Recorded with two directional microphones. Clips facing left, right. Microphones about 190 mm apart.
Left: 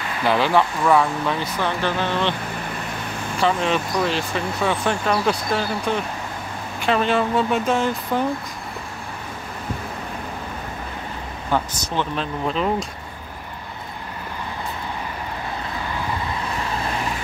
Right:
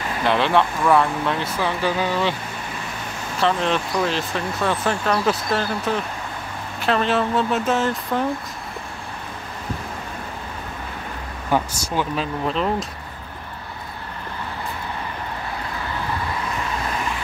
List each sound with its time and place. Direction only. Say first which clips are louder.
0.2 s speech: even; centre (ahead or behind)
3.3 s speech: even; centre (ahead or behind)
11.5 s speech: right 1 dB; 10° right (ahead or behind)